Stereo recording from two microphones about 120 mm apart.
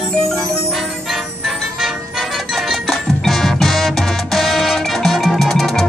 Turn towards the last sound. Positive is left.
turn(degrees=0)  # may be behind; listen again after turning